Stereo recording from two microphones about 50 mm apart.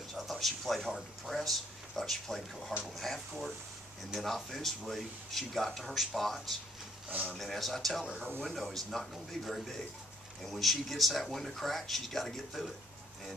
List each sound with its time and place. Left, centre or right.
0.1 s speech: centre
7.1 s speech: right
7.3 s speech: centre